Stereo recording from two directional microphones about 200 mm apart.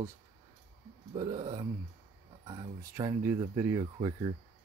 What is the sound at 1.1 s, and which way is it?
Speech, 25° right (ahead or behind).